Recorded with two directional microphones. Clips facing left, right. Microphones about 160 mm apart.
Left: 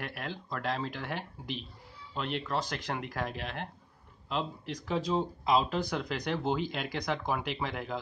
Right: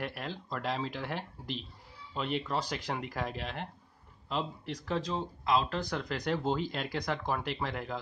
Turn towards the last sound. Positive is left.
turn(degrees=0)  # may be behind; listen again after turning